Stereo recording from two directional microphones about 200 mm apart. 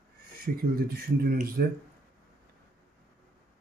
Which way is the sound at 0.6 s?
50° right (ahead or behind).